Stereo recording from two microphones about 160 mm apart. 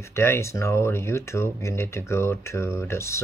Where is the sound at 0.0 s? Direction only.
15° left (ahead or behind).